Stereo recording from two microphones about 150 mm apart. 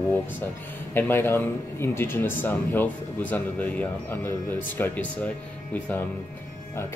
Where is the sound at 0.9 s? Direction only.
15° left (ahead or behind).